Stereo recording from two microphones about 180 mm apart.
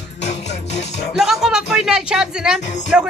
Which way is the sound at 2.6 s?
40° left (ahead or behind).